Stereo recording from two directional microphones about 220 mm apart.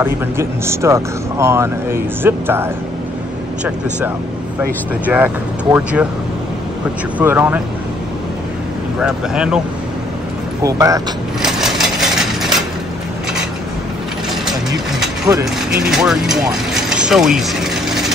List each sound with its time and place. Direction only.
0.0 s speech: 10° right (ahead or behind)
5.0 s speech: 5° right (ahead or behind)
7.2 s speech: 10° right (ahead or behind)
9.0 s speech: 5° right (ahead or behind)
10.6 s speech: 15° right (ahead or behind)
11.4 s a sound: centre (ahead or behind)
15.3 s speech: 15° right (ahead or behind)
15.8 s speech: centre (ahead or behind)